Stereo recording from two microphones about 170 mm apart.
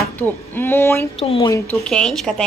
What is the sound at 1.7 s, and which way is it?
Speech, 5° left (ahead or behind).